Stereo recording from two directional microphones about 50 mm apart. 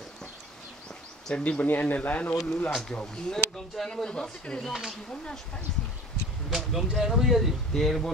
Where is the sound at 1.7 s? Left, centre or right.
Left; by 5.7 s centre.